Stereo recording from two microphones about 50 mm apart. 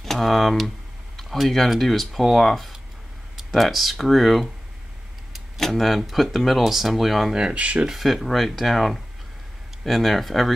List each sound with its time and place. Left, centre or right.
0.0 s speech: centre
1.1 s a sound: centre
1.7 s speech: centre
7.3 s speech: centre
7.8 s speech: centre